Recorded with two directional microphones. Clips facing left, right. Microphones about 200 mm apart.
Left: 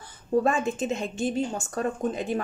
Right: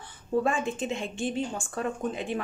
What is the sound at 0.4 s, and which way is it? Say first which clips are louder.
Speech: left 3 dB; 40° left (ahead or behind).